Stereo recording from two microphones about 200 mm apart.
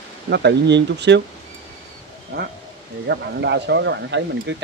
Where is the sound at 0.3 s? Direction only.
55° right (ahead or behind).